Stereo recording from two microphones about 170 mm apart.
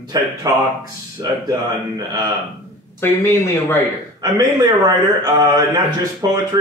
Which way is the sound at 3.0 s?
15° left (ahead or behind).